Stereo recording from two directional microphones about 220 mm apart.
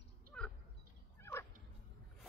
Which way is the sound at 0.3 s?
5° left (ahead or behind).